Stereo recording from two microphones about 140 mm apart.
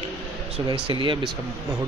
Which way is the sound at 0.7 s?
40° right (ahead or behind).